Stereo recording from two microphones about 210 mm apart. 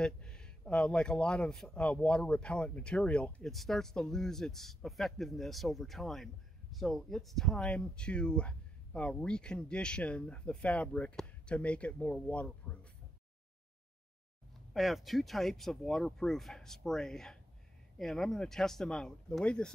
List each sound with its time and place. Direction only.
0.0 s speech: 5° left (ahead or behind)
14.7 s speech: centre (ahead or behind)